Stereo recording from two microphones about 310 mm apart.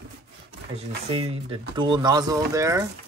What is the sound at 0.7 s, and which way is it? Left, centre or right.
Speech, centre.